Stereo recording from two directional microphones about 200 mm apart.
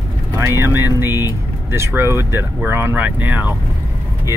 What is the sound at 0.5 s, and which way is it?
Speech, 10° right (ahead or behind).